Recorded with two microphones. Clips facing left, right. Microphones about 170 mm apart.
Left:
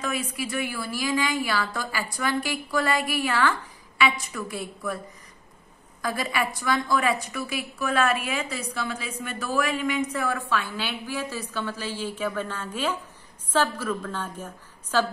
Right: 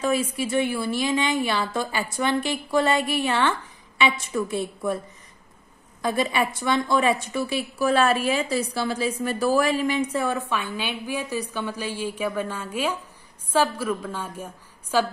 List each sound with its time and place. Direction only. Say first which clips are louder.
0.0 s a woman's voice: right 6 dB; 30° right (ahead or behind)
6.0 s a woman's voice: right 4 dB; 25° right (ahead or behind)